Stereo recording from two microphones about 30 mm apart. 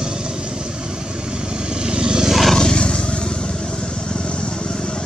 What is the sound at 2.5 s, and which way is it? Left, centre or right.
Vehicle, left.